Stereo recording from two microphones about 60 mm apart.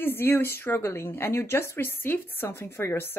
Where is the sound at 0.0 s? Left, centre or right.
Left.